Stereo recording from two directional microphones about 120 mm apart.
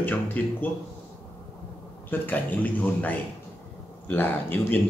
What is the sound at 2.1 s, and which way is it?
A man's voice, 15° left (ahead or behind).